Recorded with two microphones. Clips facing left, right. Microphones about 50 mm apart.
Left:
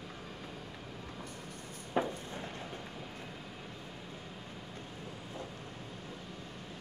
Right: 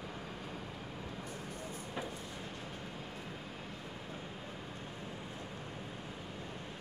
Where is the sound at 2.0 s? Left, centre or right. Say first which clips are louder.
Left 10 dB; left.